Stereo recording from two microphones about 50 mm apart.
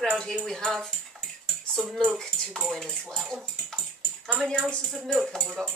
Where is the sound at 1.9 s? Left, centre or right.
Centre.